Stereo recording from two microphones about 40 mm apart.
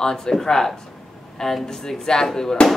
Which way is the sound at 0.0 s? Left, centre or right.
Centre.